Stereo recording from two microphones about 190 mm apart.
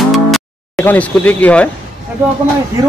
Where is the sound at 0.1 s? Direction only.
5° left (ahead or behind).